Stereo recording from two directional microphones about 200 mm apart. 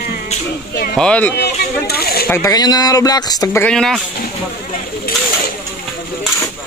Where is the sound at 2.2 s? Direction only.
15° left (ahead or behind).